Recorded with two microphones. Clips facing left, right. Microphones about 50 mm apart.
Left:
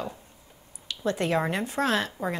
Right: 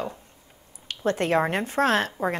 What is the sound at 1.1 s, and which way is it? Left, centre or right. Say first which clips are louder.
A woman's voice: right 3 dB; right.